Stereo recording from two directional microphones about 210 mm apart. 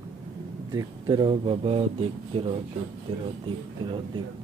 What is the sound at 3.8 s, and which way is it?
Speech, 25° right (ahead or behind).